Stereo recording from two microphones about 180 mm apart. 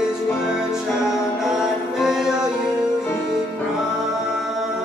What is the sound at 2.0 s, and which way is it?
Music, centre (ahead or behind).